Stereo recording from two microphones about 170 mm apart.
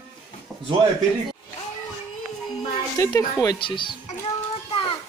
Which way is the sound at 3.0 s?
20° left (ahead or behind).